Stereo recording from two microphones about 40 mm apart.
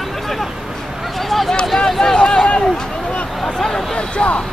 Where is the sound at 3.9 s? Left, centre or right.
Left.